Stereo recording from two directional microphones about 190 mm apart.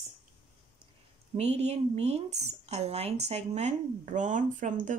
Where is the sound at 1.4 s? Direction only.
35° right (ahead or behind).